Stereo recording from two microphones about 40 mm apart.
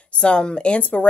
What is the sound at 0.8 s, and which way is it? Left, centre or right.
Speech, left.